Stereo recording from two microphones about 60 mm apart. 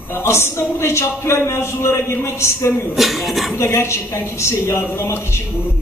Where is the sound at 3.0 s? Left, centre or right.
Centre.